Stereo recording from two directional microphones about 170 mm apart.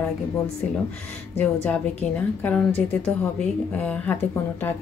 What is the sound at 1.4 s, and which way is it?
A woman's voice, 10° left (ahead or behind).